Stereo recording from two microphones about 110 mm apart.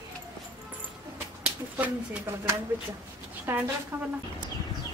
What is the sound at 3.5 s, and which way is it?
Speech, 20° right (ahead or behind).